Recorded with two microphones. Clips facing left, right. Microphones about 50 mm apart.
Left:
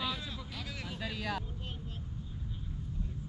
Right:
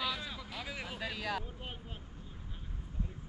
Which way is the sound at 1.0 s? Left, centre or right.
Centre.